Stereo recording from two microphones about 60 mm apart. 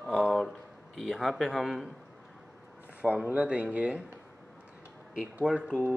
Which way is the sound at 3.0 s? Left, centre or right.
Right.